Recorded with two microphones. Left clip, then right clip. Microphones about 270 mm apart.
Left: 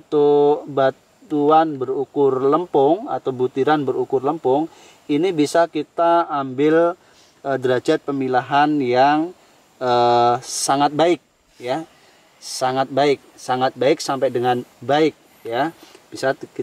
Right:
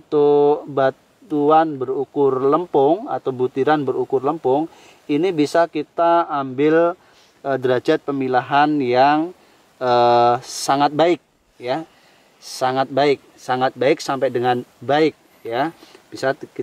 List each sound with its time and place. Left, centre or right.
0.1 s a sound: centre
1.8 s speech: right
2.7 s speech: centre
3.2 s speech: right
3.5 s speech: centre
3.8 s speech: right
4.7 s speech: centre